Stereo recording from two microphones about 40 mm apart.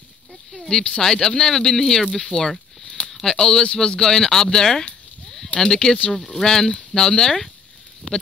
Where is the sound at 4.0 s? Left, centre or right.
Centre.